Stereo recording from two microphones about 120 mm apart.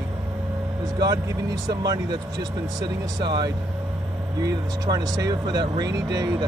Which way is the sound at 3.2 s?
40° right (ahead or behind).